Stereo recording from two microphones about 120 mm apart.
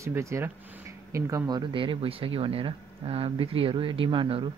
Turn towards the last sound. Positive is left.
turn(degrees=-50)  # may be behind; listen again after turning